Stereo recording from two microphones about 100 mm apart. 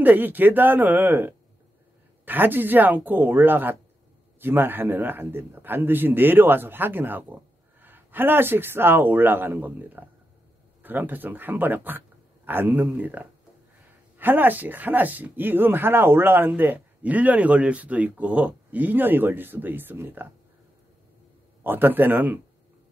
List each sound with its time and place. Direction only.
0.0 s speech: 20° right (ahead or behind)
21.6 s speech: 20° right (ahead or behind)